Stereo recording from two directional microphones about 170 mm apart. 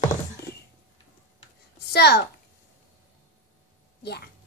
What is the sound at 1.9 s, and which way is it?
Speech, 75° left (ahead or behind).